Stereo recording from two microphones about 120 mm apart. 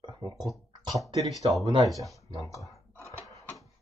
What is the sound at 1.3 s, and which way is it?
Speech, centre (ahead or behind).